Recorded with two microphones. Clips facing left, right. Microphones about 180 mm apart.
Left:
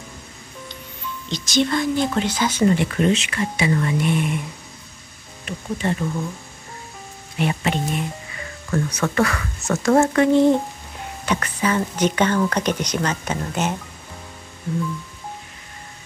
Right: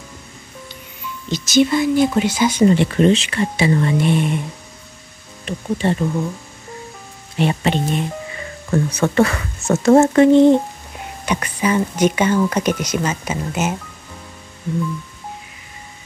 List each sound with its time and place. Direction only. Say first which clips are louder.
1.3 s speech: right 5 dB; 5° right (ahead or behind)
2.7 s speech: right 5 dB; 30° right (ahead or behind)
5.4 s speech: right 5 dB; 30° right (ahead or behind)
7.3 s speech: right 4 dB; 30° right (ahead or behind); by 13.7 s 5° right (ahead or behind)